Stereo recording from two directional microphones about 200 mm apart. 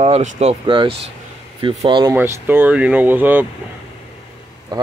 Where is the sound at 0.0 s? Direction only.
35° right (ahead or behind).